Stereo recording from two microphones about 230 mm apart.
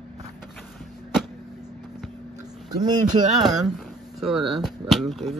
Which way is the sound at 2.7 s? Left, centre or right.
Centre.